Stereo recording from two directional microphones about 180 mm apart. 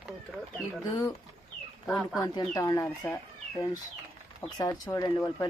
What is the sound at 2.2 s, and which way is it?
Speech, 20° left (ahead or behind).